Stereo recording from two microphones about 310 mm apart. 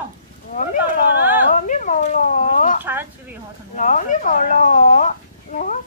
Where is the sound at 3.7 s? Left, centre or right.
Left.